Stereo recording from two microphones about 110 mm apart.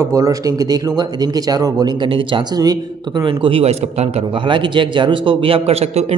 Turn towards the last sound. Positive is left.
turn(degrees=-70)  # may be behind; listen again after turning